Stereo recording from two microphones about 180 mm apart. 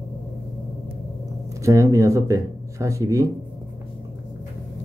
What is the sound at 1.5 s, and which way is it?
Speech, 15° right (ahead or behind).